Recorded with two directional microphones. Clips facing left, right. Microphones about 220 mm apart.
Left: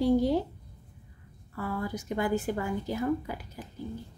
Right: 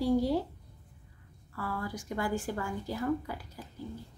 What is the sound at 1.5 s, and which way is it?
A woman's voice, 20° left (ahead or behind).